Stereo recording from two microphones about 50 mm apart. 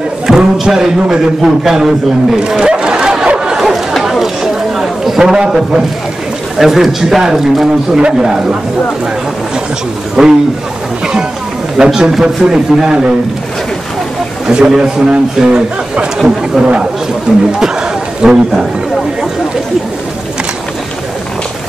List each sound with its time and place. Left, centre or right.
0.3 s a man's voice: centre
1.6 s a sound: centre
6.6 s a man's voice: centre
10.2 s speech: centre
11.8 s a man's voice: centre
12.1 s speech: centre
12.4 s a man's voice: centre
14.5 s a man's voice: centre
17.3 s a man's voice: centre